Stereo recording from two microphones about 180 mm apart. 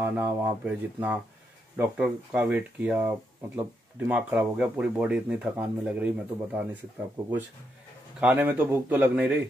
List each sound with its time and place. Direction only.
0.0 s speech: 10° right (ahead or behind)
8.2 s speech: 10° right (ahead or behind)